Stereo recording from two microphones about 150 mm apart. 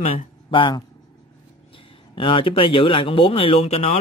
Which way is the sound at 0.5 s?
35° left (ahead or behind).